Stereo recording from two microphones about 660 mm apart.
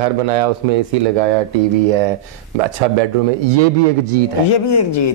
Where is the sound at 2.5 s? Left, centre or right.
Right.